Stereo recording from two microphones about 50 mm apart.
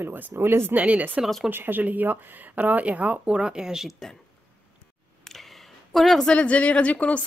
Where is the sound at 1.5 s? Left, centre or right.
Right.